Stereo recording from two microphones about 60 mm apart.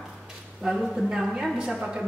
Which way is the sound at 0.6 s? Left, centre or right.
Centre.